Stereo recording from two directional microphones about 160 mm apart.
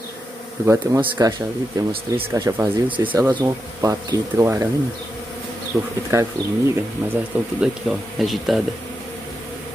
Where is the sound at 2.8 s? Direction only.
30° right (ahead or behind).